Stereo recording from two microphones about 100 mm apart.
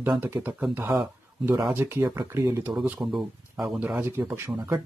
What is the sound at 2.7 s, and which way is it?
Speech, 15° right (ahead or behind).